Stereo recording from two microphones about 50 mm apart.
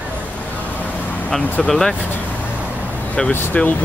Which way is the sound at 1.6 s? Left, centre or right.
Centre.